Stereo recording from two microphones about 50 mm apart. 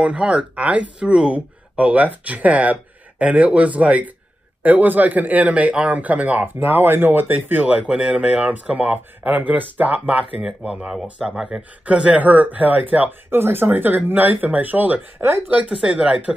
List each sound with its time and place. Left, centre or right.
0.0 s a man's voice: right
10.4 s speech: centre
11.8 s a man's voice: right
13.3 s speech: right
13.7 s a man's voice: right
15.4 s speech: right